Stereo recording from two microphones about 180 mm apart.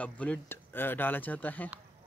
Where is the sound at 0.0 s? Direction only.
10° left (ahead or behind).